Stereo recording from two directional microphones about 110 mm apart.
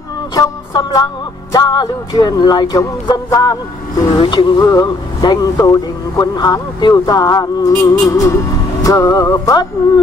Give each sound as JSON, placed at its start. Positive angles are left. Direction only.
{"t": 0.3, "sound": "a man's voice", "side_deg": 35}
{"t": 4.2, "sound": "music", "side_deg": 50}
{"t": 4.6, "sound": "a man's voice", "side_deg": 35}